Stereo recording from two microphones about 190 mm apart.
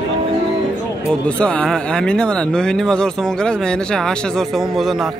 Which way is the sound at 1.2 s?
5° left (ahead or behind).